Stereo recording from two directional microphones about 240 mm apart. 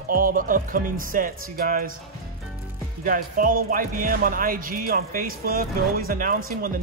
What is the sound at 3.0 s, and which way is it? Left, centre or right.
Speech, right.